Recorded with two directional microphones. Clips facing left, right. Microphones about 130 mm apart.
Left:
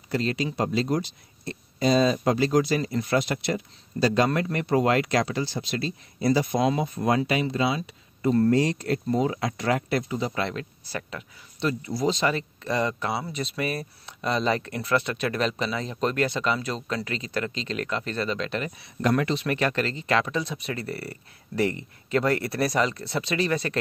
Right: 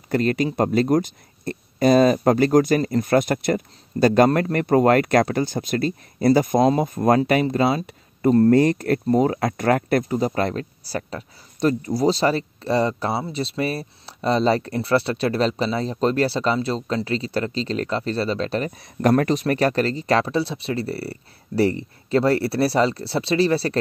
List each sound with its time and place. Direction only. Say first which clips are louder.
0.1 s speech: right 6 dB; 50° right (ahead or behind); by 23.8 s 35° right (ahead or behind)